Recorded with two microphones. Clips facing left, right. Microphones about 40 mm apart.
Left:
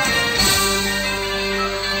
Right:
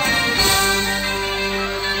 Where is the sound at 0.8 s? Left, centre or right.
Right.